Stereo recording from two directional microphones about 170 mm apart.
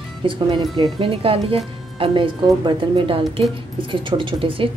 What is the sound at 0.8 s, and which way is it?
Speech, 30° right (ahead or behind).